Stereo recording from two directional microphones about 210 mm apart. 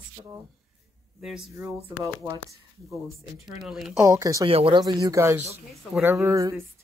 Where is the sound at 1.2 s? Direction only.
5° right (ahead or behind).